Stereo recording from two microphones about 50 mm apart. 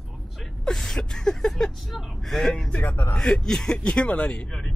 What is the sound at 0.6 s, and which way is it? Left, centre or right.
Speech, centre.